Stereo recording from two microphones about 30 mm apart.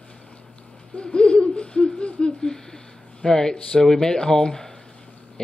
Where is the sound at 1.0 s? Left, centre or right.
Left.